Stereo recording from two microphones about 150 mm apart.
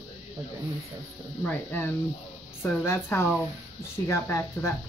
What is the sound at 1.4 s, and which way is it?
A woman's voice, 10° left (ahead or behind).